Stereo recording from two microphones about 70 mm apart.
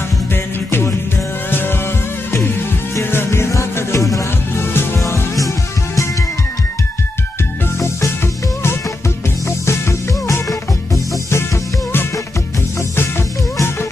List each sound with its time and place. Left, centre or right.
0.3 s music: left
3.0 s music: left
4.6 s music: left
9.7 s music: left